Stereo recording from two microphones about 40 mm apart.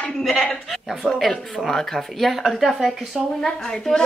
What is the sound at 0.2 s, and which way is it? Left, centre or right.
Speech, centre.